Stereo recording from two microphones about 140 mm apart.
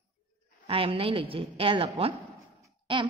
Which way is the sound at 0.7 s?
40° right (ahead or behind).